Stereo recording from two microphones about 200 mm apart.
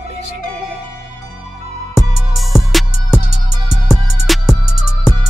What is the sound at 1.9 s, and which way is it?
Music, centre (ahead or behind).